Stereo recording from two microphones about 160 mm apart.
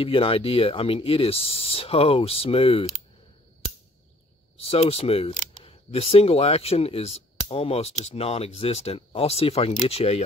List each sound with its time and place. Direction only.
0.0 s speech: 35° left (ahead or behind)
4.6 s speech: 35° left (ahead or behind)